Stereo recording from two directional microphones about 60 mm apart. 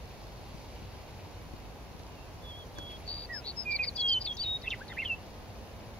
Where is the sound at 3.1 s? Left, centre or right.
Centre.